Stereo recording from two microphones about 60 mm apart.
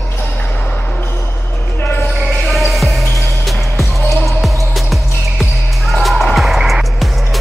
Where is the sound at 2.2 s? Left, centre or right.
Centre.